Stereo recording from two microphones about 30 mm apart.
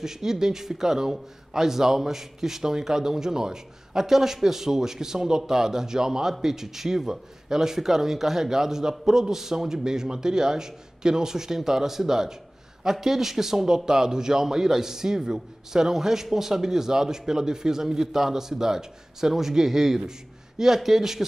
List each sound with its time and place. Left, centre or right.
0.0 s speech: centre